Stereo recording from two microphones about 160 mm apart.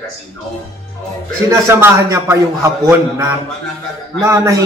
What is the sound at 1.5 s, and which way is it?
A man's voice, 15° right (ahead or behind).